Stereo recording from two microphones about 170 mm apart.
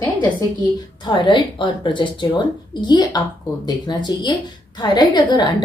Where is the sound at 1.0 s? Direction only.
25° left (ahead or behind).